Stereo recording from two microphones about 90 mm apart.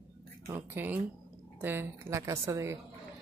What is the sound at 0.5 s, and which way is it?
Speech, 25° right (ahead or behind).